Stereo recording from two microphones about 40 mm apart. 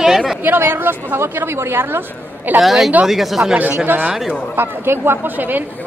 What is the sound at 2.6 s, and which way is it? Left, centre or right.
Speech, centre.